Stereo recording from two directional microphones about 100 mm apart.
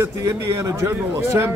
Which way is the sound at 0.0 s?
30° right (ahead or behind).